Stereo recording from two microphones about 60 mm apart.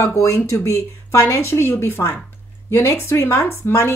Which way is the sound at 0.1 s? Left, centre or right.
Left.